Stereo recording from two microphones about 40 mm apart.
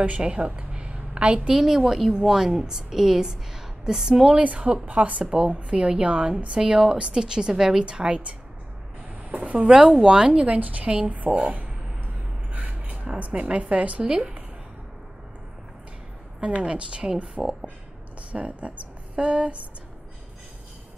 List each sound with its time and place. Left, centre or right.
0.2 s a woman's voice: right
0.6 s a sound: right
1.5 s a woman's voice: centre
4.3 s a woman's voice: right; by 7.8 s centre
7.8 s a woman's voice: right
9.7 s a woman's voice: right
10.4 s a woman's voice: right
12.5 s speech: right
14.0 s a woman's voice: right
16.3 s a woman's voice: right
17.4 s a woman's voice: centre
18.3 s speech: right